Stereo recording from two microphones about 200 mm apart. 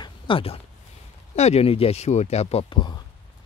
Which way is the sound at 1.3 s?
30° left (ahead or behind).